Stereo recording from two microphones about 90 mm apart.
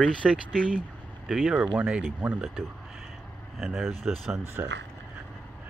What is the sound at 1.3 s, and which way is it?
Speech, 5° right (ahead or behind).